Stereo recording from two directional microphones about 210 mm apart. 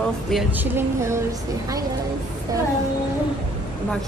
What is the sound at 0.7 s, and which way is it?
Speech, 15° right (ahead or behind).